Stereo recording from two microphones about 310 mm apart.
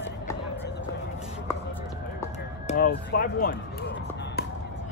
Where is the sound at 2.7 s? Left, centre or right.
Left.